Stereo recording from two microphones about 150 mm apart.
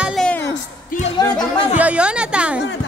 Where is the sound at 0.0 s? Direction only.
Centre (ahead or behind).